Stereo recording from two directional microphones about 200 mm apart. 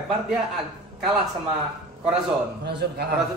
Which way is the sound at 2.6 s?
55° right (ahead or behind).